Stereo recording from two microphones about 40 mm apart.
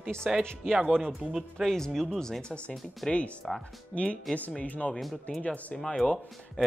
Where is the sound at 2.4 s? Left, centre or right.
Left.